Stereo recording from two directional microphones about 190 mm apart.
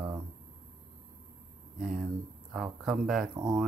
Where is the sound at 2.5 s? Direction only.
Centre (ahead or behind).